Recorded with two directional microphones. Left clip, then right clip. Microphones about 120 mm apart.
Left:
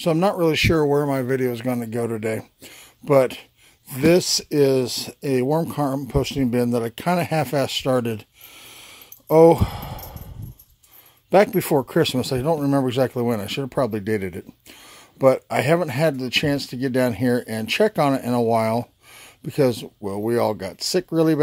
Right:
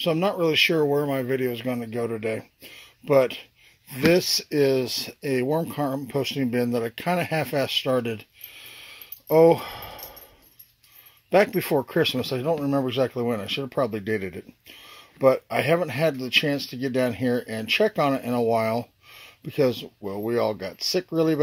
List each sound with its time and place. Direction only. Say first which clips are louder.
0.0 s speech: left 3 dB; 30° left (ahead or behind)
11.2 s speech: left 3 dB; 30° left (ahead or behind)